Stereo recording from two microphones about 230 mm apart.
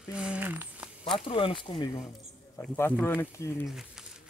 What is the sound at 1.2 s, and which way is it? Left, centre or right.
Speech, left.